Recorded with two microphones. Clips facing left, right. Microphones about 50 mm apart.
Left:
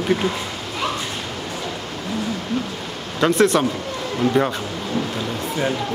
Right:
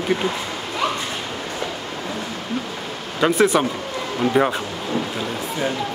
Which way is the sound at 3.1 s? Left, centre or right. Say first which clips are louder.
Even; centre.